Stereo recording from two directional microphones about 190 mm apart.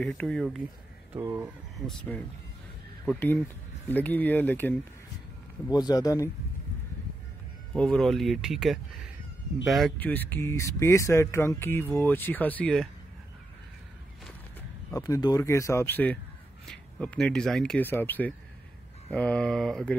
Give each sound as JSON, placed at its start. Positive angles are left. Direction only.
{"t": 0.0, "sound": "speech", "side_deg": 5}
{"t": 1.1, "sound": "speech", "side_deg": -15}
{"t": 1.9, "sound": "speech", "side_deg": 5}
{"t": 5.7, "sound": "speech", "side_deg": 20}
{"t": 7.7, "sound": "speech", "side_deg": 5}
{"t": 14.9, "sound": "speech", "side_deg": 20}